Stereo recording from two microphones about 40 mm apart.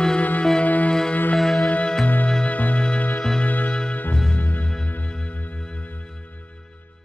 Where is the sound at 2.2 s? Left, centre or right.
Left.